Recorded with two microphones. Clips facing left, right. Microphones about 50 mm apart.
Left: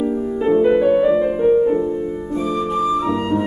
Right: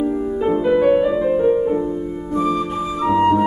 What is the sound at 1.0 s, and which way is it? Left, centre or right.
Music, centre.